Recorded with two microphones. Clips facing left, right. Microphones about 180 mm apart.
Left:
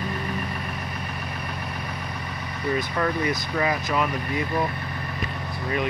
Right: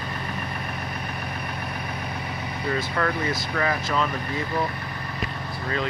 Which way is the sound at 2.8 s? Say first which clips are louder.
Left 1 dB; 15° left (ahead or behind).